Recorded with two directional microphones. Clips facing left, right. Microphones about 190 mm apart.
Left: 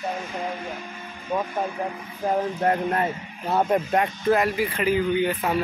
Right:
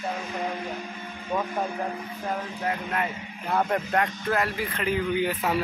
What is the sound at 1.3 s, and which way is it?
Speech, 10° left (ahead or behind).